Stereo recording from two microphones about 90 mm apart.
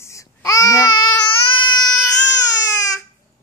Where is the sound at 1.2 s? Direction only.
60° left (ahead or behind).